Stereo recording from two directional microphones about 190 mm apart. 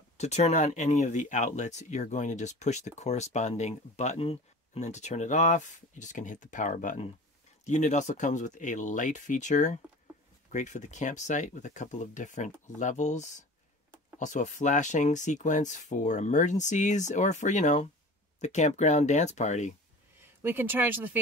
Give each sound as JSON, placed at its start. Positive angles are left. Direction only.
{"t": 0.2, "sound": "speech", "side_deg": 35}
{"t": 20.2, "sound": "speech", "side_deg": -10}